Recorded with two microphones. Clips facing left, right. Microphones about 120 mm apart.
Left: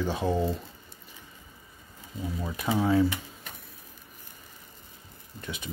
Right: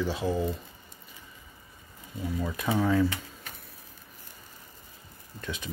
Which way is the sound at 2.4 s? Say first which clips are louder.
Even; 15° left (ahead or behind).